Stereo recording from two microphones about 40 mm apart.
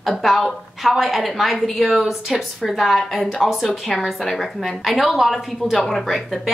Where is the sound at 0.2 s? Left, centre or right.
Centre.